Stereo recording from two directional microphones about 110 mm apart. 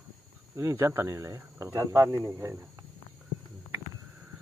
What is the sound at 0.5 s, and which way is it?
Speech, 25° right (ahead or behind).